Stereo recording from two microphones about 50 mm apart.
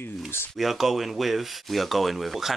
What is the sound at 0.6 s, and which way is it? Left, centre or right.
Speech, centre.